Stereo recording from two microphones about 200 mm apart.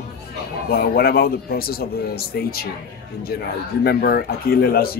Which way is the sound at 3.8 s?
50° left (ahead or behind).